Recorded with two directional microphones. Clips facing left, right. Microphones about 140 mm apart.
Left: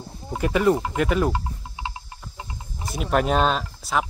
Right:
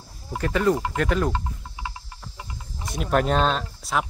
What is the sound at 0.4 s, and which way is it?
Speech, 10° left (ahead or behind).